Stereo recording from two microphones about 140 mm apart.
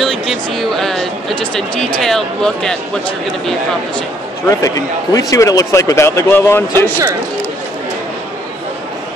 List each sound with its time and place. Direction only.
0.0 s speech: centre (ahead or behind)
4.5 s speech: 25° left (ahead or behind)